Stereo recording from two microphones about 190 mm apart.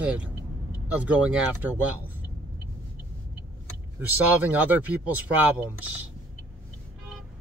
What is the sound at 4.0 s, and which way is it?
Speech, 10° right (ahead or behind).